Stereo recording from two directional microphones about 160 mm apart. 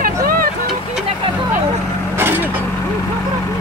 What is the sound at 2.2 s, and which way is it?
Vehicle, 15° right (ahead or behind).